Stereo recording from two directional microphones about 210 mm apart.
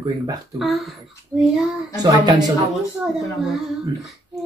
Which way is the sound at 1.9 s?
20° right (ahead or behind).